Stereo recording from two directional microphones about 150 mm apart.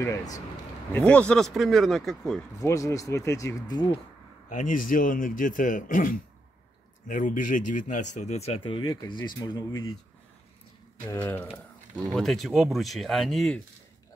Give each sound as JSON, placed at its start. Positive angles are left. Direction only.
{"t": 0.0, "sound": "speech", "side_deg": 20}
{"t": 0.9, "sound": "speech", "side_deg": 10}
{"t": 2.6, "sound": "speech", "side_deg": 20}
{"t": 4.5, "sound": "a man's voice", "side_deg": 60}
{"t": 11.1, "sound": "speech", "side_deg": 10}
{"t": 12.0, "sound": "speech", "side_deg": 0}